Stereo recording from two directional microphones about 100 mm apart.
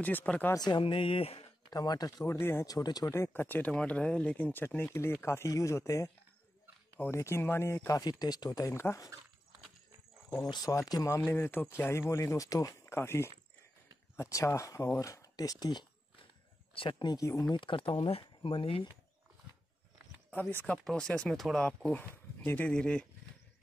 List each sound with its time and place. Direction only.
0.0 s speech: 15° left (ahead or behind)
0.6 s speech: 50° left (ahead or behind); by 1.5 s 75° left (ahead or behind)
1.7 s speech: 40° left (ahead or behind)
2.2 s speech: 25° left (ahead or behind)
2.6 s speech: 40° left (ahead or behind)
3.1 s speech: 25° left (ahead or behind)
7.9 s speech: 40° left (ahead or behind)
10.5 s speech: 40° left (ahead or behind)
11.2 s speech: 20° left (ahead or behind); by 15.9 s 45° left (ahead or behind)
16.7 s speech: 60° left (ahead or behind)
17.1 s speech: 35° left (ahead or behind)
17.5 s speech: 55° left (ahead or behind)
20.2 s speech: 20° left (ahead or behind)
20.7 s speech: 10° left (ahead or behind)